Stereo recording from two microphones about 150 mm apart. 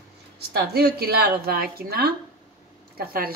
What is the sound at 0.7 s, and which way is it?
A woman's voice, 90° right.